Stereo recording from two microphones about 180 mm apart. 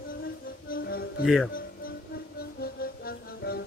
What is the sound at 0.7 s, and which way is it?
Music, 55° left (ahead or behind).